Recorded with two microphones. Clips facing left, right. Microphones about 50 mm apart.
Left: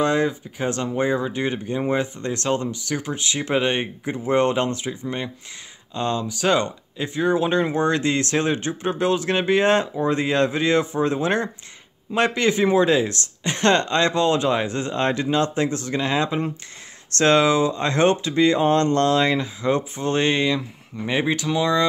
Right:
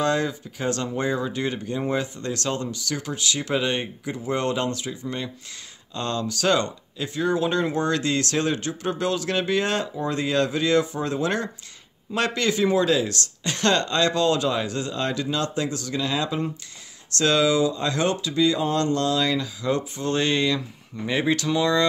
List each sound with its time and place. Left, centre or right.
0.0 s speech: left